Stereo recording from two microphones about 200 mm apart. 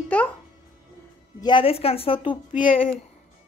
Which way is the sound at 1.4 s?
25° left (ahead or behind).